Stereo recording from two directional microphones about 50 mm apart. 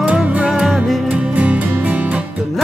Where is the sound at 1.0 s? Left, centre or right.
Right.